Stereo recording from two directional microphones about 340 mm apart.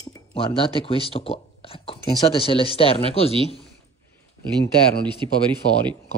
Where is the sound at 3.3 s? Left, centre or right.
Centre.